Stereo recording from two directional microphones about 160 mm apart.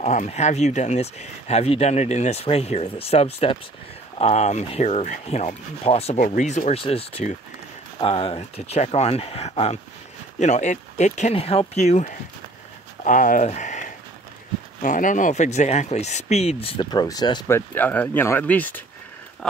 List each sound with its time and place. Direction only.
0.0 s speech: 45° left (ahead or behind)
6.1 s speech: 55° left (ahead or behind); by 18.9 s 10° left (ahead or behind)